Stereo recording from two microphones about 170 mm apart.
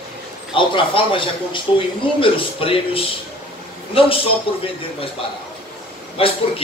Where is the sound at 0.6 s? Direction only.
30° left (ahead or behind).